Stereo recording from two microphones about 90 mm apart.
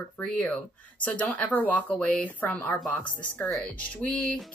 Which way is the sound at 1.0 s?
15° left (ahead or behind).